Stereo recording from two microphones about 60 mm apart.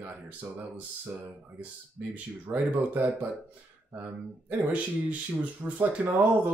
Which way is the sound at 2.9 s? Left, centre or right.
Right.